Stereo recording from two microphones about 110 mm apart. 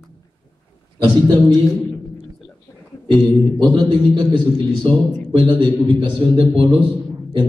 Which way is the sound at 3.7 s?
45° right (ahead or behind).